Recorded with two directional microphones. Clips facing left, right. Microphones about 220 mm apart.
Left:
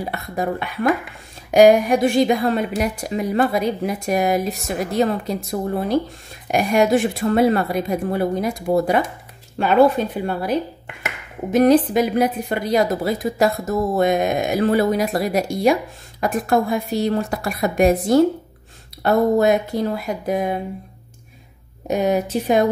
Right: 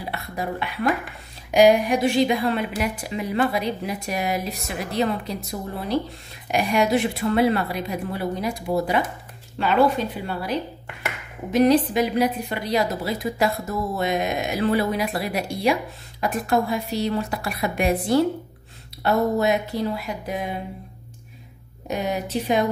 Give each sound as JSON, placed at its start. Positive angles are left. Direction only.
{"t": 0.1, "sound": "a woman's voice", "side_deg": 45}
{"t": 21.8, "sound": "a woman's voice", "side_deg": 45}